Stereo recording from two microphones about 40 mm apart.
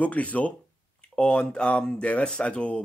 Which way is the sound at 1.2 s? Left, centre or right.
Left.